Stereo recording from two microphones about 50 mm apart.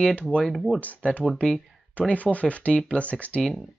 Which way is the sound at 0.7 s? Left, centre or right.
Left.